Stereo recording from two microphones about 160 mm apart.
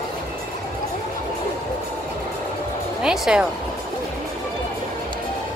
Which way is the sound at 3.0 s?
5° right (ahead or behind).